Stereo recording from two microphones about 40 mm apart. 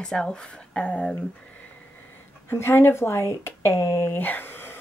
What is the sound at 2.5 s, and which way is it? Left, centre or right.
Speech, left.